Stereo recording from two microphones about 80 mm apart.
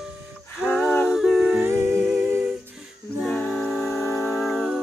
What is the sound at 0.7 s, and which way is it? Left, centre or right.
Humming, centre.